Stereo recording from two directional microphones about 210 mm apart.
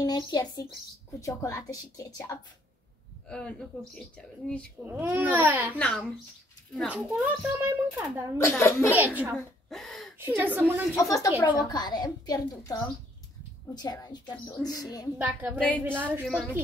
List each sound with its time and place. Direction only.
0.0 s a child's voice: 20° left (ahead or behind)
3.3 s speech: 5° left (ahead or behind)
4.8 s a child's voice: 10° right (ahead or behind)
5.8 s a child's voice: 5° left (ahead or behind); by 8.3 s 15° right (ahead or behind)
8.4 s speech: 10° left (ahead or behind)
8.9 s speech: 10° right (ahead or behind)
10.1 s a child's voice: 10° right (ahead or behind)
11.0 s a woman's voice: 15° left (ahead or behind)
15.1 s a child's voice: 5° right (ahead or behind)